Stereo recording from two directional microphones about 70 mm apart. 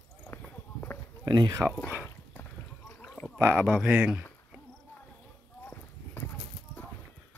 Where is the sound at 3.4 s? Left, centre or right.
Right.